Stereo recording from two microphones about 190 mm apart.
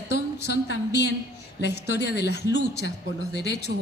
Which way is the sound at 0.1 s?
60° left (ahead or behind).